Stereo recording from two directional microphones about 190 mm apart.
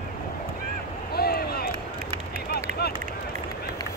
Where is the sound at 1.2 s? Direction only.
55° left (ahead or behind).